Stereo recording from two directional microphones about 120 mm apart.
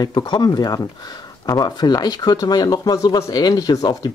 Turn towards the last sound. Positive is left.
turn(degrees=30)  # may be behind; listen again after turning